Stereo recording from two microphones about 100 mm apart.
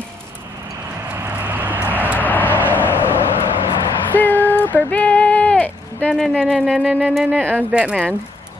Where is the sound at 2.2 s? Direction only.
20° left (ahead or behind).